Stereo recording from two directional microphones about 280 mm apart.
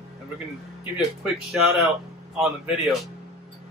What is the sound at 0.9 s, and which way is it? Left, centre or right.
Speech, centre.